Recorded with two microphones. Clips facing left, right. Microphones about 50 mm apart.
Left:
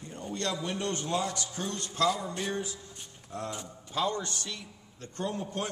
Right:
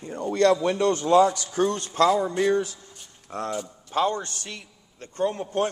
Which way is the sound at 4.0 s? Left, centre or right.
Right.